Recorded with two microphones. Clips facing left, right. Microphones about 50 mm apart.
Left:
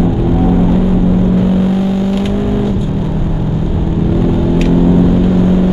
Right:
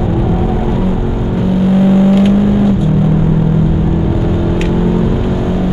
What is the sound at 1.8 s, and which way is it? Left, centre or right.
Vehicle, right.